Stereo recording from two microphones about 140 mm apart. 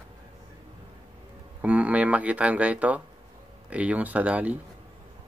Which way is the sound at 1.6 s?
10° right (ahead or behind).